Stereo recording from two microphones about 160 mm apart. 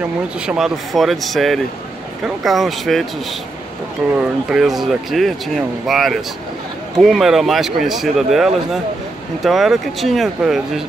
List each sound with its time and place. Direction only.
0.5 s speech: 5° right (ahead or behind)
4.2 s speech: centre (ahead or behind)